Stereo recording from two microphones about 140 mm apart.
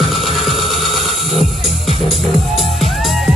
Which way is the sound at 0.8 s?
50° right (ahead or behind).